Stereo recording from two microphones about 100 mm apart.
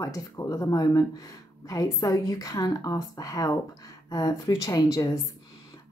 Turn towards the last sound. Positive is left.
turn(degrees=40)  # may be behind; listen again after turning